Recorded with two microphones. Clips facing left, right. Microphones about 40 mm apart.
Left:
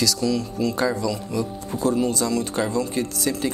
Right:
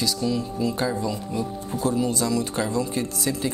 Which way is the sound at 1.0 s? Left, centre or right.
Left.